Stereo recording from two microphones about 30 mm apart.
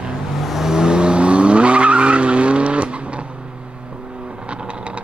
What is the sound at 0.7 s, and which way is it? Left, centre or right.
Vehicle, right.